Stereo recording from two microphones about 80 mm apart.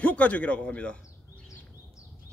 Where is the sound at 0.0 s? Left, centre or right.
Centre.